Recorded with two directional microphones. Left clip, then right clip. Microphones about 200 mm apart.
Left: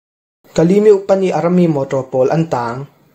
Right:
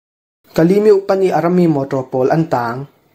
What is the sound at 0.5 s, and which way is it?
A man's voice, 20° right (ahead or behind).